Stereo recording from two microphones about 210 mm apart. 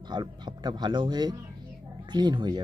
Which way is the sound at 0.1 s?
20° right (ahead or behind).